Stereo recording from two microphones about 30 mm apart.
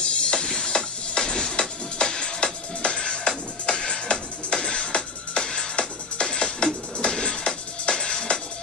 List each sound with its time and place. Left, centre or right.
0.0 s music: left